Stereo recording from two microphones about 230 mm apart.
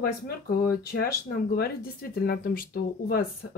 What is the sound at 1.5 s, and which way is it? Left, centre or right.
Speech, left.